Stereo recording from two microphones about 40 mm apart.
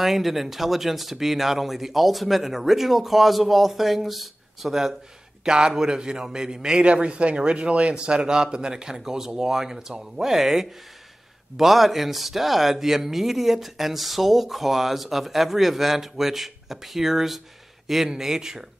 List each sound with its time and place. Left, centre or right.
0.0 s speech: centre
5.4 s a man's voice: centre
6.9 s a man's voice: right; by 18.7 s centre